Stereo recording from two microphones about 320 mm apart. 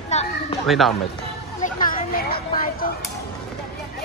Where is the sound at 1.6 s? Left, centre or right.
Left.